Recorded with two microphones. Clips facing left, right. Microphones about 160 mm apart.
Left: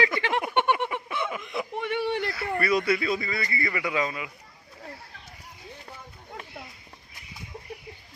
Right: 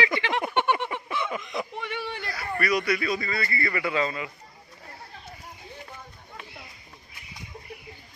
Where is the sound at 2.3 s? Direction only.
25° left (ahead or behind); by 4.3 s 10° left (ahead or behind).